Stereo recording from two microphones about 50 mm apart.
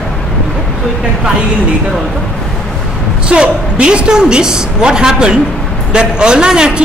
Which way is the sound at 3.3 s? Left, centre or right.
Centre.